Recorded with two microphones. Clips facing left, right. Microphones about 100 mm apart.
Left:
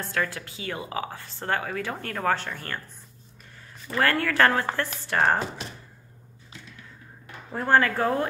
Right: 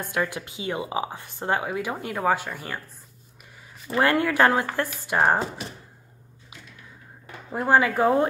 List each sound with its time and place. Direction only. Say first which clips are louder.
0.0 s a woman's voice: right 2 dB; 15° right (ahead or behind)
4.0 s a woman's voice: right 2 dB; 15° right (ahead or behind)
7.2 s speech: right 2 dB; 10° right (ahead or behind)